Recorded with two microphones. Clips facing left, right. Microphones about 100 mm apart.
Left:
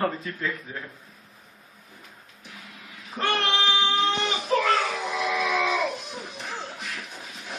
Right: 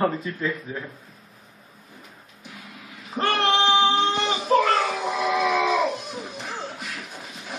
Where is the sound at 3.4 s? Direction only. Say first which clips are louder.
Right 9 dB; 35° right (ahead or behind).